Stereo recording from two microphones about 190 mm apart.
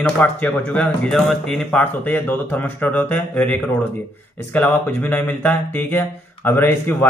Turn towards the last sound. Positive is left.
turn(degrees=10)  # may be behind; listen again after turning